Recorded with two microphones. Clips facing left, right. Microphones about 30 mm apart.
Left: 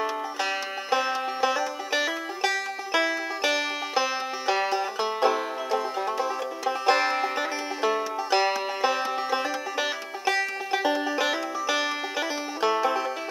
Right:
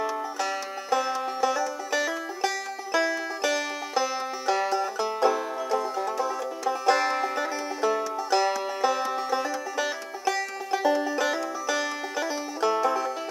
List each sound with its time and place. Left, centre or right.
0.0 s music: left